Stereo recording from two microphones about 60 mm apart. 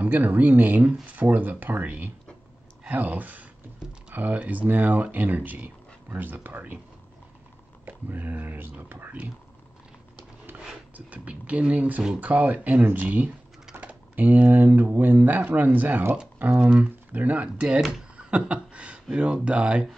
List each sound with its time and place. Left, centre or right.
0.0 s speech: right
7.8 s speech: right
11.0 s speech: right
18.1 s a sound: centre
19.1 s speech: centre